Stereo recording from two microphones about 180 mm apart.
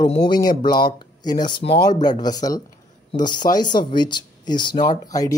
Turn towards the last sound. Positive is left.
turn(degrees=20)  # may be behind; listen again after turning